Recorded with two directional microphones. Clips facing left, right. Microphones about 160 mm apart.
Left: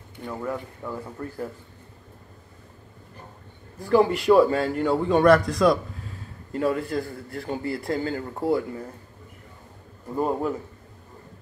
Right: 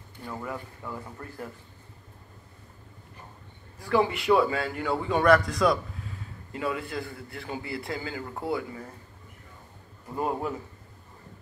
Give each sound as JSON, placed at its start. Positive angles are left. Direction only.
{"t": 0.3, "sound": "a man's voice", "side_deg": 5}
{"t": 3.9, "sound": "a man's voice", "side_deg": 40}
{"t": 5.0, "sound": "a man's voice", "side_deg": -5}
{"t": 6.5, "sound": "speech", "side_deg": 45}
{"t": 10.1, "sound": "a man's voice", "side_deg": 0}